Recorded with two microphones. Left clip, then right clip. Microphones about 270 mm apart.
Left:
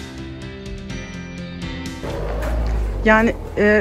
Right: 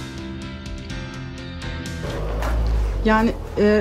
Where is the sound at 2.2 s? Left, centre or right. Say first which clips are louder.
Left 1 dB; left.